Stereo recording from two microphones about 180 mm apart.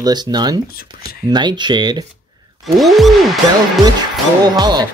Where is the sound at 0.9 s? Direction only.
55° left (ahead or behind).